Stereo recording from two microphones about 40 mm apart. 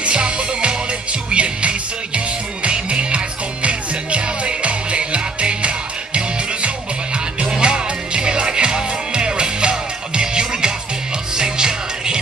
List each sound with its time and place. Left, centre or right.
0.0 s music: right